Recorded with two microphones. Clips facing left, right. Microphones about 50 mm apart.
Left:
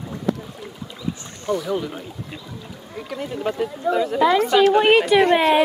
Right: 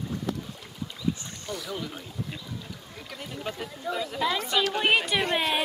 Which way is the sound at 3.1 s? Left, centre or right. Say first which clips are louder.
Left 11 dB; centre.